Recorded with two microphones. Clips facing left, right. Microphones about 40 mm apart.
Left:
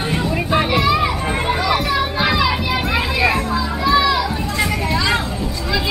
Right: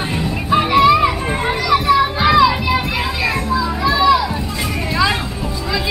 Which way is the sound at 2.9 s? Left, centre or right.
Centre.